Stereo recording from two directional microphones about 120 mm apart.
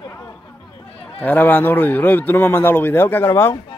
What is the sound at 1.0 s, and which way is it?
Speech, 15° left (ahead or behind).